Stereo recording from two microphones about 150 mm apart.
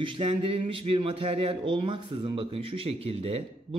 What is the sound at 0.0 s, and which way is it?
A man's voice, 40° right (ahead or behind).